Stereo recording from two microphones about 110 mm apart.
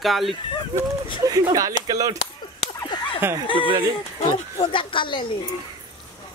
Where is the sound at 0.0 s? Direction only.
Centre (ahead or behind).